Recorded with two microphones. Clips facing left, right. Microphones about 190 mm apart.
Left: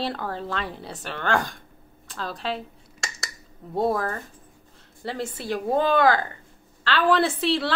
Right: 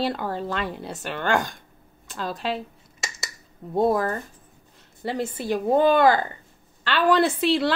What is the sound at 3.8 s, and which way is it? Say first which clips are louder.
Speech: right 3 dB; 5° right (ahead or behind).